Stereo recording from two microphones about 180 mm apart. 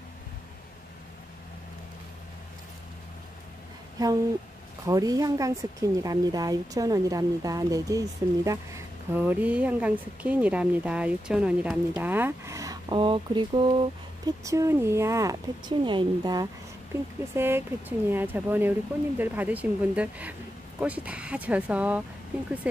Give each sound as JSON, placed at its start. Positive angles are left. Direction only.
{"t": 4.0, "sound": "speech", "side_deg": -20}
{"t": 14.2, "sound": "speech", "side_deg": -15}
{"t": 17.3, "sound": "speech", "side_deg": -10}